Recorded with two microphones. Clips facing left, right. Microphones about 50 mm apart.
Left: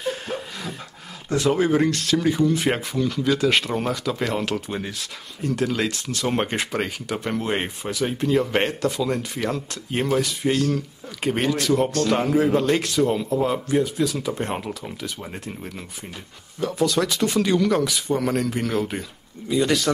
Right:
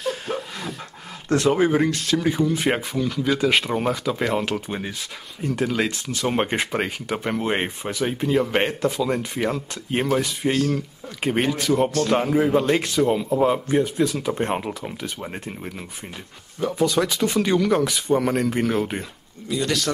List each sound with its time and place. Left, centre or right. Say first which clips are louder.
0.0 s a sound: right 1 dB; centre
1.5 s speech: left 1 dB; centre
16.5 s speech: right 1 dB; centre
19.5 s speech: left 3 dB; centre